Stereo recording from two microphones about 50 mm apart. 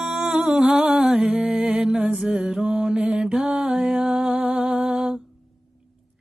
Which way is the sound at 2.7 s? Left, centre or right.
Right.